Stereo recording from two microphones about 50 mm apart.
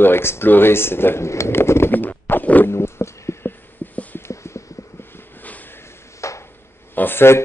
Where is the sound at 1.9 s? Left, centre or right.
Left.